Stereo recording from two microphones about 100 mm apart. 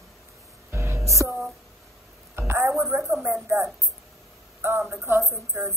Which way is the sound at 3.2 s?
25° right (ahead or behind).